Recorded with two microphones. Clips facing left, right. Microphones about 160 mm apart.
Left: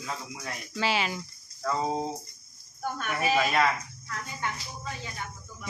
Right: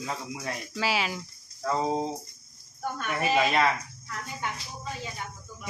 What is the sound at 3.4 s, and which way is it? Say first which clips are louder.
Speech: right 2 dB; 25° right (ahead or behind).